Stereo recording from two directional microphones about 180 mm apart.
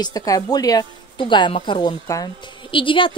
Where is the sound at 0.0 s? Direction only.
20° left (ahead or behind).